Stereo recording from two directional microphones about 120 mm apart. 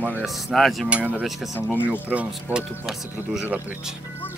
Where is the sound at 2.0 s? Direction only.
10° right (ahead or behind).